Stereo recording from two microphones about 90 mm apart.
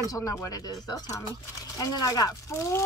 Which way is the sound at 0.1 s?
40° left (ahead or behind).